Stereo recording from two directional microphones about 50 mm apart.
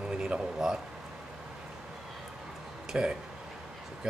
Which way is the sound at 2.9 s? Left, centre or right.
Right.